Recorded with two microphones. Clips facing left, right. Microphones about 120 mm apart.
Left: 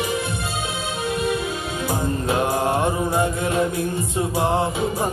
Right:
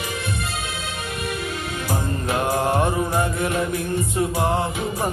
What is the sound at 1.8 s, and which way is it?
Music, 25° left (ahead or behind).